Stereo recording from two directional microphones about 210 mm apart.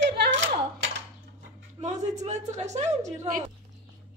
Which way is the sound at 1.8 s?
35° right (ahead or behind).